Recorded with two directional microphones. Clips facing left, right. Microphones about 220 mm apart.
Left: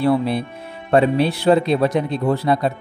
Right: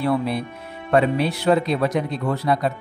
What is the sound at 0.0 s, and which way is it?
Speech, 30° left (ahead or behind).